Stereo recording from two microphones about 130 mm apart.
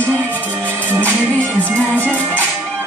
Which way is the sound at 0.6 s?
15° right (ahead or behind).